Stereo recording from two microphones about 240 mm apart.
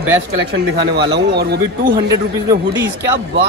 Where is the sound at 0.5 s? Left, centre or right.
Right.